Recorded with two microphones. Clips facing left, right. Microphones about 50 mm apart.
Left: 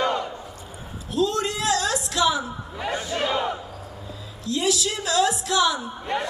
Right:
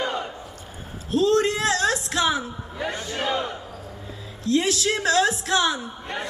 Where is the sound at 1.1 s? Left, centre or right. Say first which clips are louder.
Right 4 dB; right.